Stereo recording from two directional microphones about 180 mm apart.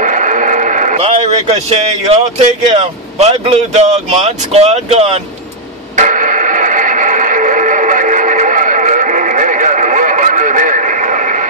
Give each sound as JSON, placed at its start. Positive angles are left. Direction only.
{"t": 0.0, "sound": "speech", "side_deg": -45}
{"t": 5.9, "sound": "radio", "side_deg": -45}